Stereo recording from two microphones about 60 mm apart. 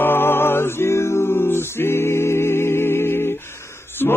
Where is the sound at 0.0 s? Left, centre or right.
Left.